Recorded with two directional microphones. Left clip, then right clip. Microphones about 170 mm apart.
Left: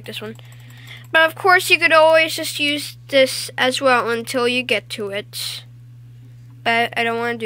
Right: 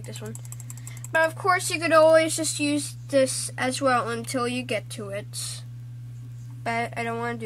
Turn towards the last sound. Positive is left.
turn(degrees=20)  # may be behind; listen again after turning